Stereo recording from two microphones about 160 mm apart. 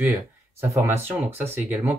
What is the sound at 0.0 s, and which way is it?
Speech, 15° right (ahead or behind).